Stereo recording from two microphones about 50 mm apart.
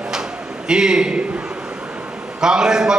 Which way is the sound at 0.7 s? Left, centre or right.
Centre.